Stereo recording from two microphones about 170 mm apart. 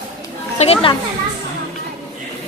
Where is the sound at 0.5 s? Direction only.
35° left (ahead or behind).